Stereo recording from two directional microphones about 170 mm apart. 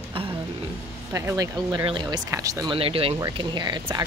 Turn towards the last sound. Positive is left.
turn(degrees=-25)  # may be behind; listen again after turning